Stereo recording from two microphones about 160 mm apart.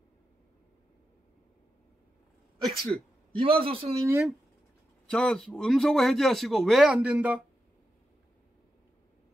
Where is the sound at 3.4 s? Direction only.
35° right (ahead or behind).